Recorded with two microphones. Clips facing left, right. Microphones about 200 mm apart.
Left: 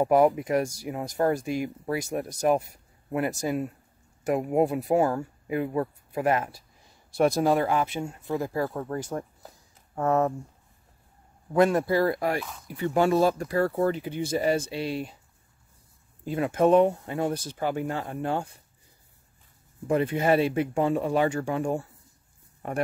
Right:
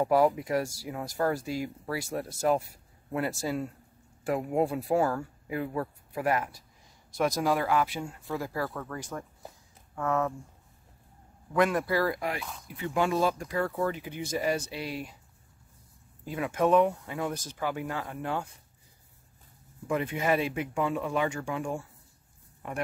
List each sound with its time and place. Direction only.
0.0 s speech: 20° left (ahead or behind); by 10.3 s 35° left (ahead or behind)
11.5 s speech: 30° left (ahead or behind)
16.3 s speech: 30° left (ahead or behind)
19.9 s speech: 35° left (ahead or behind)